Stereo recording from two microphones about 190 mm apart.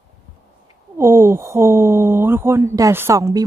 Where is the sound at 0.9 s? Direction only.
15° right (ahead or behind).